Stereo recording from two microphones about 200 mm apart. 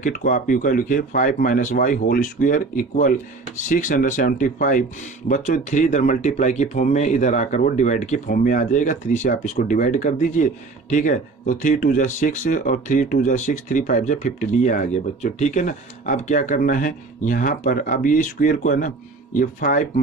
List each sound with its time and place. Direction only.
0.0 s speech: 45° left (ahead or behind)